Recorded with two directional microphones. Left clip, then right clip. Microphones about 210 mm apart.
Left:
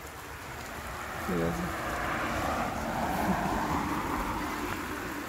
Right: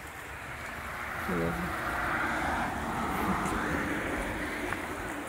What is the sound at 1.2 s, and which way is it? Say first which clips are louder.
Speech: left 1 dB; centre (ahead or behind).